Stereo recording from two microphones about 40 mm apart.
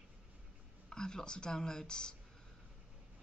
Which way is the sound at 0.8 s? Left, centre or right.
Centre.